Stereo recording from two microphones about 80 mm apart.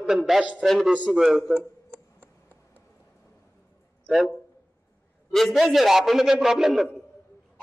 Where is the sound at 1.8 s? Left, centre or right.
Left.